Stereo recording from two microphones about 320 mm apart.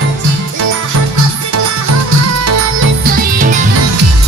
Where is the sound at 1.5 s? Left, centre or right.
Right.